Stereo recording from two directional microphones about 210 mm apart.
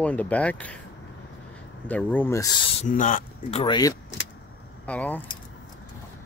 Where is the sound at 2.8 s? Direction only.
40° left (ahead or behind).